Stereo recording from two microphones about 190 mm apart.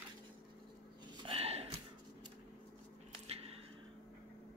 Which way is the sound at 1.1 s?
30° right (ahead or behind).